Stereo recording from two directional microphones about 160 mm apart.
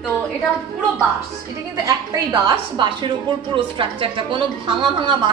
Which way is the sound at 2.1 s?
25° right (ahead or behind).